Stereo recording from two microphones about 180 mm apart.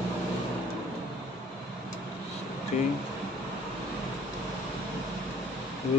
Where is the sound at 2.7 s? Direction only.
45° left (ahead or behind).